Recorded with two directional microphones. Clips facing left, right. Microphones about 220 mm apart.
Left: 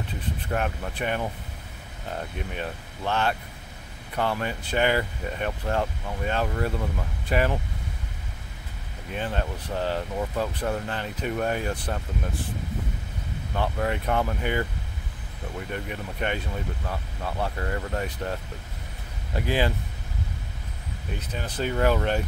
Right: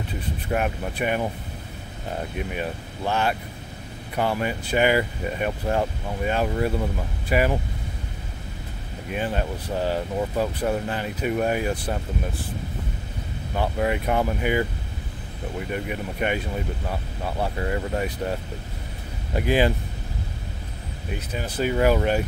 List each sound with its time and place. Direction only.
0.5 s speech: 15° right (ahead or behind)
2.3 s speech: 10° right (ahead or behind)
9.1 s speech: 10° right (ahead or behind)
13.6 s speech: 10° right (ahead or behind)
15.7 s speech: 10° right (ahead or behind)
21.3 s speech: 10° right (ahead or behind)